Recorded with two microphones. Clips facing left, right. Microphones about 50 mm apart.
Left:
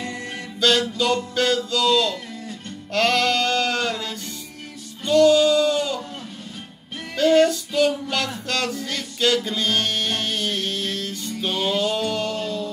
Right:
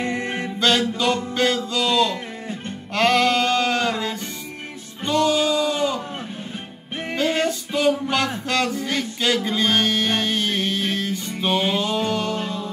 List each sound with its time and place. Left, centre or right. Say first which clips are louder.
0.0 s music: right 6 dB; right
5.0 s a sound: left 4 dB; right
7.1 s music: left 5 dB; right